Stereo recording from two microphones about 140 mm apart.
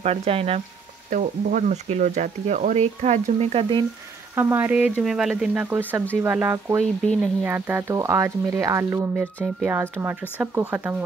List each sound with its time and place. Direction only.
0.0 s speech: 50° right (ahead or behind)
1.1 s speech: 70° right (ahead or behind)
3.5 s speech: 35° right (ahead or behind)
4.4 s speech: 15° right (ahead or behind)